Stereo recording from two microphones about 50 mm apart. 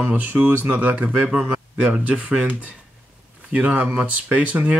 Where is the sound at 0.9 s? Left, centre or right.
Right.